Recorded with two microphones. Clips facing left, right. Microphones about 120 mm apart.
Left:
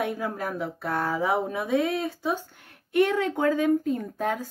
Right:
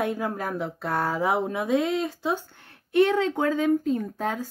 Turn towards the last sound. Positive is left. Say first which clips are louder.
# right 1 dB
turn(degrees=-25)  # may be behind; listen again after turning